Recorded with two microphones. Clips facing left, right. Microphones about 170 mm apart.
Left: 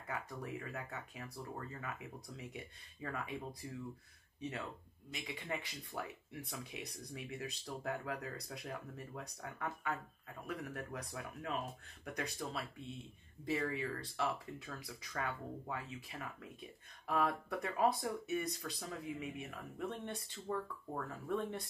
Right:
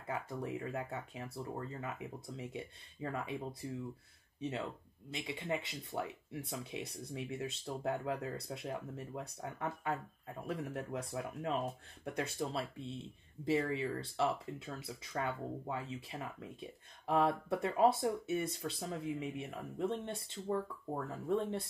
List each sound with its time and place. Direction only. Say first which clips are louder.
0.1 s speech: right 4 dB; 25° right (ahead or behind)